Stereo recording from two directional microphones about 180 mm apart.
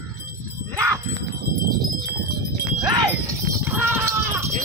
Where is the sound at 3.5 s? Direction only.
15° right (ahead or behind).